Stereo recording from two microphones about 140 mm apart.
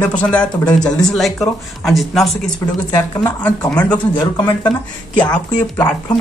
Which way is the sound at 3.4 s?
10° left (ahead or behind).